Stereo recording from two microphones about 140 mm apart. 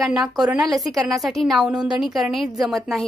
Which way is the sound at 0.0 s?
5° right (ahead or behind).